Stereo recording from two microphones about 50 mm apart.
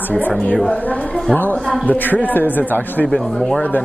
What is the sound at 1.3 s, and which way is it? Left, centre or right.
A man's voice, left.